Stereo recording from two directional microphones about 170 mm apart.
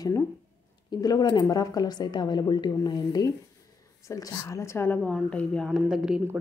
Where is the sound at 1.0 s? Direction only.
25° left (ahead or behind).